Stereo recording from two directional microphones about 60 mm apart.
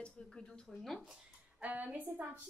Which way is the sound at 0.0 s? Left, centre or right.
Centre.